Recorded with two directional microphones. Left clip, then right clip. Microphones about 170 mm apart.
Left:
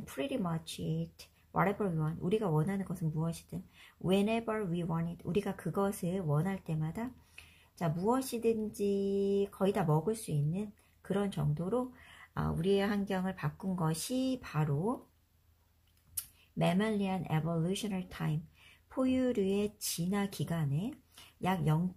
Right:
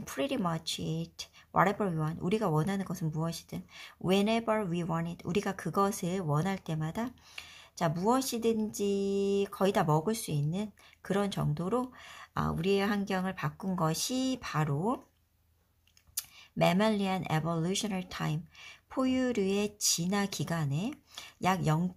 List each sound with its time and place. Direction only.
0.0 s speech: 30° right (ahead or behind)
16.5 s speech: 30° right (ahead or behind)